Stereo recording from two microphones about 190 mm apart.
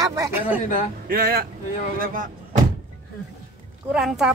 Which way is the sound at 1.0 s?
55° right (ahead or behind).